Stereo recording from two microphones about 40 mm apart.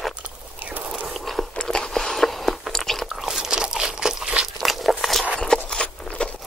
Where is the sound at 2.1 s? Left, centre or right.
Centre.